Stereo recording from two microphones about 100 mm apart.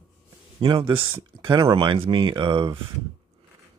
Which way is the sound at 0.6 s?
60° right (ahead or behind).